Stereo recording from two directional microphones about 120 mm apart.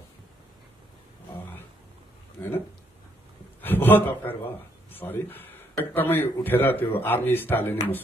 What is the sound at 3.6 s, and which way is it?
Speech, 15° left (ahead or behind).